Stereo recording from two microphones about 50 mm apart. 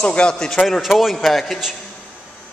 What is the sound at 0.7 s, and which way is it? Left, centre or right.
A man's voice, centre.